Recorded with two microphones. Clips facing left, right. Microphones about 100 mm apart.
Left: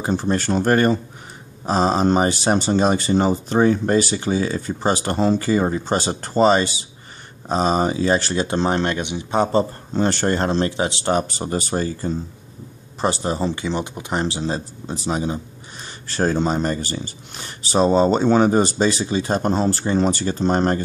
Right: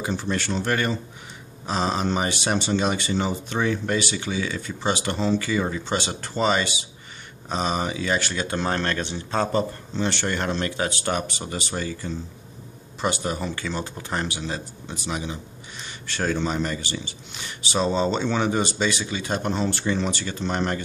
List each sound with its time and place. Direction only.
0.0 s speech: 40° left (ahead or behind); by 9.5 s 15° left (ahead or behind)
9.9 s speech: 40° left (ahead or behind); by 14.2 s 20° left (ahead or behind)
14.2 s speech: 30° left (ahead or behind)